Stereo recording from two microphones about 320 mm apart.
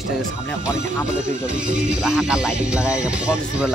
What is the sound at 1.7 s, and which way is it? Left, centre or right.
Speech, centre.